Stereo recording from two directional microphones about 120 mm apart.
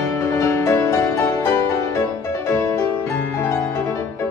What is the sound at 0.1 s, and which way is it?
Music, 25° left (ahead or behind).